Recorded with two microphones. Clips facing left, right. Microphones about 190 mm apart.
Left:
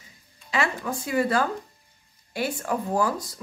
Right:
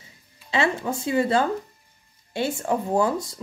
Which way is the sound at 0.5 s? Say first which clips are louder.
Right 3 dB; 25° right (ahead or behind).